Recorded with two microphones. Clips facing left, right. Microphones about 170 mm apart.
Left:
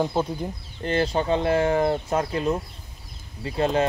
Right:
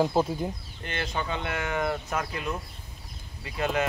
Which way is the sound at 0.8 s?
35° left (ahead or behind).